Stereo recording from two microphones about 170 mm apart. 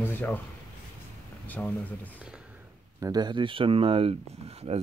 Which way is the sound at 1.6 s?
10° left (ahead or behind).